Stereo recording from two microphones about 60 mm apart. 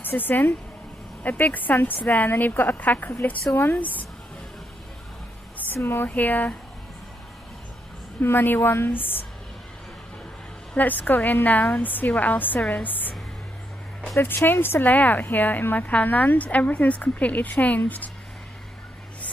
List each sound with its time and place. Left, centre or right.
0.0 s a woman's voice: left
5.8 s a woman's voice: left
6.0 s a woman's voice: left
8.2 s a woman's voice: left
10.8 s a woman's voice: left
14.2 s a woman's voice: left